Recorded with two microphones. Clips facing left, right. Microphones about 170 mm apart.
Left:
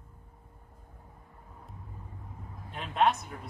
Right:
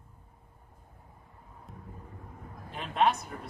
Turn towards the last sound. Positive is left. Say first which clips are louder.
# even
turn(degrees=0)  # may be behind; listen again after turning